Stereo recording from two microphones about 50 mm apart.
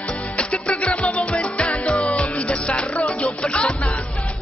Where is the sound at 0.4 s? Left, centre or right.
Left.